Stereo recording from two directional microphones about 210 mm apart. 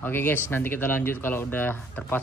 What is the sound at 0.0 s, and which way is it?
Speech, 10° left (ahead or behind).